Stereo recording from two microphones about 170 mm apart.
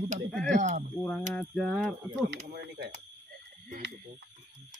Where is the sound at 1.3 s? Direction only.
5° left (ahead or behind).